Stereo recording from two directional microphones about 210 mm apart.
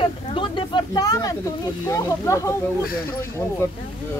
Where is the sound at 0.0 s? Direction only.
25° left (ahead or behind).